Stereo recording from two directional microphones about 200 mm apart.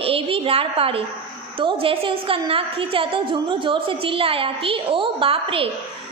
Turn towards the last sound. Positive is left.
turn(degrees=-25)  # may be behind; listen again after turning